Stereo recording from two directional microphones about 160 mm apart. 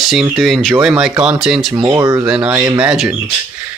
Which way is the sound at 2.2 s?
5° right (ahead or behind).